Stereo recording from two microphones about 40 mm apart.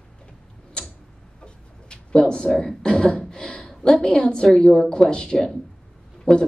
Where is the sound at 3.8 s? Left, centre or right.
Centre.